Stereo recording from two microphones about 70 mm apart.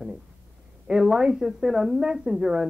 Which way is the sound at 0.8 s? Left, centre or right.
Centre.